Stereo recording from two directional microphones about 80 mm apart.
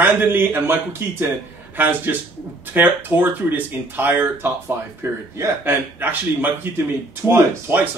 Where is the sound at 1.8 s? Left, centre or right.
Right.